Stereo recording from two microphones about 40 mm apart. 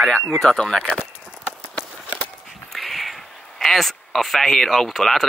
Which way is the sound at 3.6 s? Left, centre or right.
Centre.